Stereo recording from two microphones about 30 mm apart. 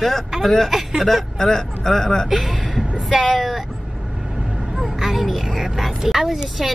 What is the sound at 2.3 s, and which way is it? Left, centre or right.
Speech, centre.